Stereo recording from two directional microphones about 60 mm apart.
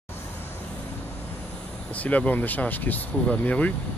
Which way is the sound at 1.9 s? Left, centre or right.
Left.